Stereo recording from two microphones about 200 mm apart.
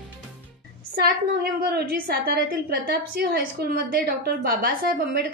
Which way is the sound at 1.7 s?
50° right (ahead or behind).